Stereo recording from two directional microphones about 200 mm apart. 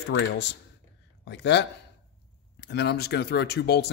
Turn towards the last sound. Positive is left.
turn(degrees=55)  # may be behind; listen again after turning